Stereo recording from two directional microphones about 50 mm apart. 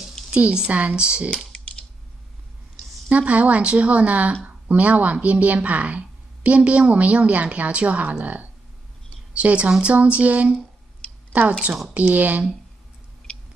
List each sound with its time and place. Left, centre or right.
0.3 s a woman's voice: right
1.3 s typing: centre
3.1 s a woman's voice: right
11.9 s speech: right